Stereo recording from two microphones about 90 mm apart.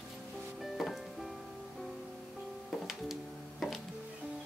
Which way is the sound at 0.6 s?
Centre (ahead or behind).